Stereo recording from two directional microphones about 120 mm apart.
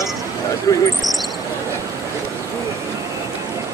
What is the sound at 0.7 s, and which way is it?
Speech, 25° left (ahead or behind).